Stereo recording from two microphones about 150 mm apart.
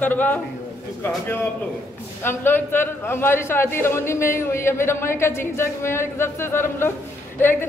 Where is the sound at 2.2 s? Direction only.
15° left (ahead or behind).